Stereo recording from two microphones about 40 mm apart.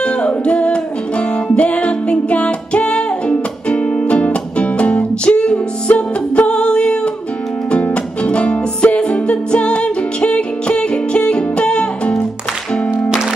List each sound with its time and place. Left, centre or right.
0.0 s music: left